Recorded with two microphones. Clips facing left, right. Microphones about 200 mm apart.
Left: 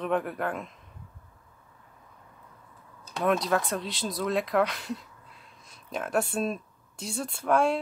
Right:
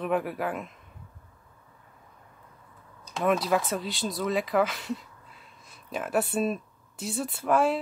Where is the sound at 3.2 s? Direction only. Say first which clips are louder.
Right 1 dB; 5° right (ahead or behind).